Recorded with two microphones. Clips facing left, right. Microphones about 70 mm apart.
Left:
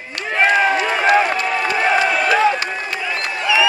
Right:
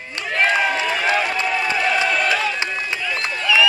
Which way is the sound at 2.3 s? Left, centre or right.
Left.